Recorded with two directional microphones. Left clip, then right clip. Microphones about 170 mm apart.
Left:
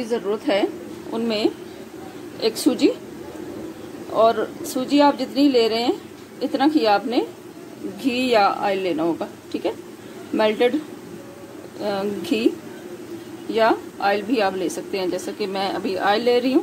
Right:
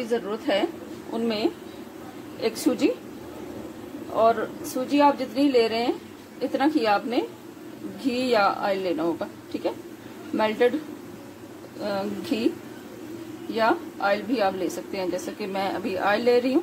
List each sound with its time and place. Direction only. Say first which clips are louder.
0.1 s a woman's voice: left 4 dB; 15° left (ahead or behind)
4.1 s a woman's voice: left 3 dB; 15° left (ahead or behind)
11.8 s a woman's voice: left 4 dB; 15° left (ahead or behind)
13.5 s a woman's voice: left 4 dB; 15° left (ahead or behind)